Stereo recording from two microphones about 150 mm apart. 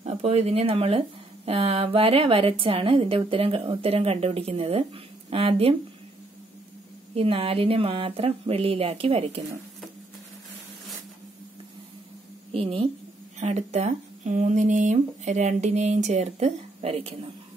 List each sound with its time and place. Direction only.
0.0 s speech: 45° right (ahead or behind)
7.2 s speech: 40° right (ahead or behind)
12.5 s speech: 40° right (ahead or behind)
13.4 s speech: 50° right (ahead or behind)